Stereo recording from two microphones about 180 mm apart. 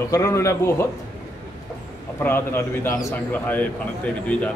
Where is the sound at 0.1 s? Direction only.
15° left (ahead or behind).